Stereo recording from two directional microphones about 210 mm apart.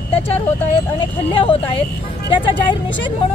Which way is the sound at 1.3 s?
25° left (ahead or behind).